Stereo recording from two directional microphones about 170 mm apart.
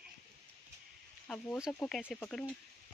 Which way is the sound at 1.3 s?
Centre (ahead or behind).